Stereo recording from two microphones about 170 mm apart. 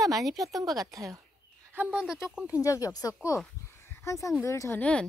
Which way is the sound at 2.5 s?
20° left (ahead or behind).